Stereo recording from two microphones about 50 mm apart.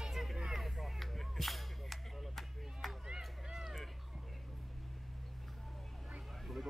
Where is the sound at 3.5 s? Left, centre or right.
Centre.